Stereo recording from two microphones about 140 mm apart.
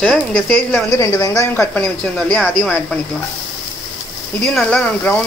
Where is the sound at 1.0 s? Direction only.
20° left (ahead or behind).